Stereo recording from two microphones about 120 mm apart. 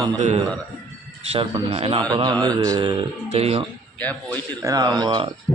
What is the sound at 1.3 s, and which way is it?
Speech, 50° right (ahead or behind).